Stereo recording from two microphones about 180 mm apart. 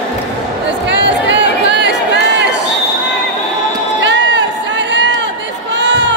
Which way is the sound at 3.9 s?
80° right.